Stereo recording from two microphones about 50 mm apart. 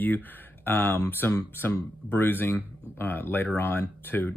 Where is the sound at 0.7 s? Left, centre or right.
Left.